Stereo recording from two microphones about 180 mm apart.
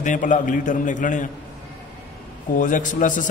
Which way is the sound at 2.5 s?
45° left (ahead or behind).